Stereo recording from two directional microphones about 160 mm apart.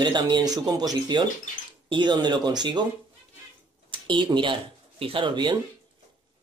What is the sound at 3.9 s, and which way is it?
Speech, 30° right (ahead or behind).